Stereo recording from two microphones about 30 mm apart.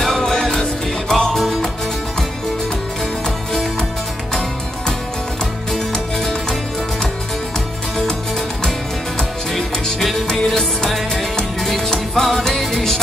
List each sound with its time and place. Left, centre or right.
0.0 s music: centre
1.3 s music: centre
4.3 s music: centre
9.5 s music: centre